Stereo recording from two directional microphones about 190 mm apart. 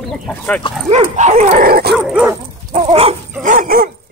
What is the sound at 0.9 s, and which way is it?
Dog, 35° right (ahead or behind).